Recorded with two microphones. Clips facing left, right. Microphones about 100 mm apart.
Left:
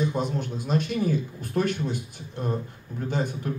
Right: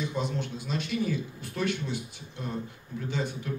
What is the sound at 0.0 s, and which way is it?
Speech, 45° left (ahead or behind).